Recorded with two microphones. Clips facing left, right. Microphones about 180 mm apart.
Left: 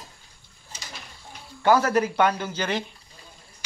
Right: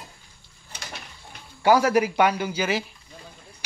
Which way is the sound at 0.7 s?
65° right (ahead or behind).